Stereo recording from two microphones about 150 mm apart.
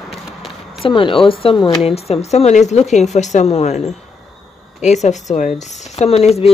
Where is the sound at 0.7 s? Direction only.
35° left (ahead or behind).